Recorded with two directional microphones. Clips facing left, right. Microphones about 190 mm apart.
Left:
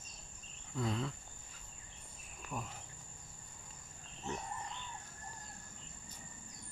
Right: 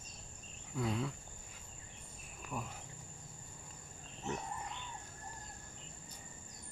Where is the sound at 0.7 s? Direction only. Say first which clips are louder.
Right 1 dB; 10° right (ahead or behind).